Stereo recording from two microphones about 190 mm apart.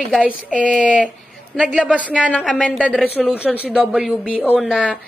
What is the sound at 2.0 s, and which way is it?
A woman's voice, 5° left (ahead or behind).